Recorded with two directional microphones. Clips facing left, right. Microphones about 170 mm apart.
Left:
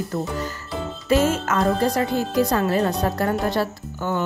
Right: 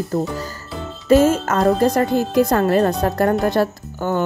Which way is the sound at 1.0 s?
45° right (ahead or behind).